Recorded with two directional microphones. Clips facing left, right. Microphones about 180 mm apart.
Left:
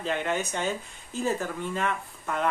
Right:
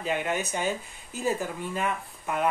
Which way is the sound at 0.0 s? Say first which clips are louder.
Even; 10° right (ahead or behind).